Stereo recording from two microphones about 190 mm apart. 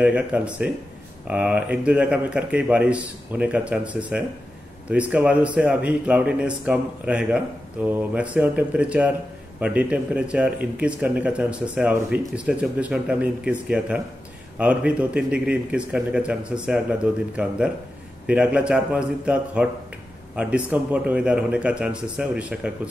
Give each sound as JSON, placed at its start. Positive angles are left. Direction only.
{"t": 0.0, "sound": "speech", "side_deg": -5}